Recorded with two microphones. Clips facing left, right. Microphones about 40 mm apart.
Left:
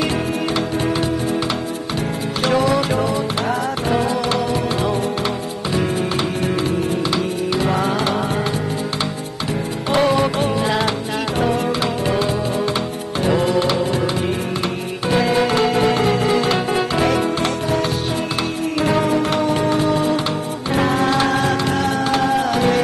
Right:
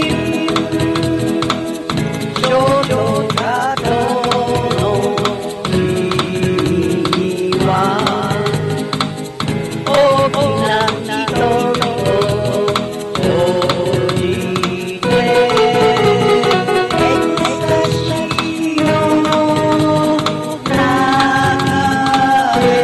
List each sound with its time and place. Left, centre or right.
2.4 s music: right
4.0 s music: right
6.4 s music: right
10.0 s music: right
10.4 s music: right